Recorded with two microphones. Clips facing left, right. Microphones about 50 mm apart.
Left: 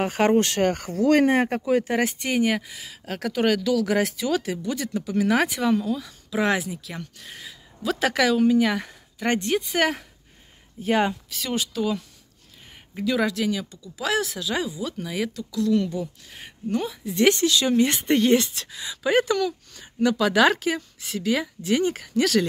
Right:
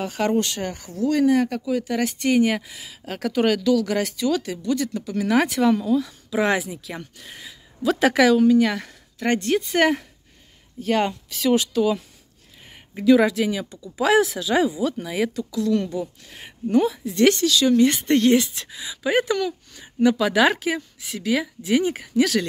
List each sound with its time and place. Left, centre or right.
0.0 s speech: left
1.3 s speech: left
2.0 s speech: centre
10.8 s speech: centre
11.2 s speech: centre
17.1 s speech: centre
17.4 s speech: left
17.9 s speech: centre